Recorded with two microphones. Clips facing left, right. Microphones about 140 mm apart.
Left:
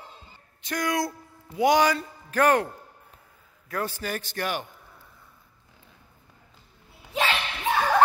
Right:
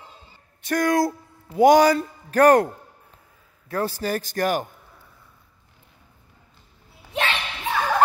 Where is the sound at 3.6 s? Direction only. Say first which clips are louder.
Right 5 dB; 35° right (ahead or behind).